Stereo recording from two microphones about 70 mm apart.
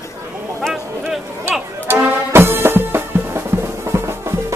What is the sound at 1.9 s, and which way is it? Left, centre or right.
Music, right.